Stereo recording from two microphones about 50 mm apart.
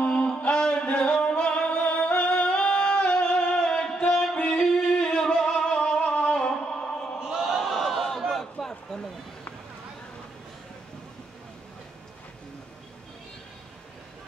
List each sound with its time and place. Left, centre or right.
0.0 s music: centre
4.1 s music: centre
7.2 s a sound: centre